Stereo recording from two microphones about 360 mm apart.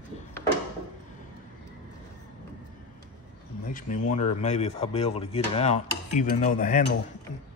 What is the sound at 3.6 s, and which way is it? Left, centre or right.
Speech, left.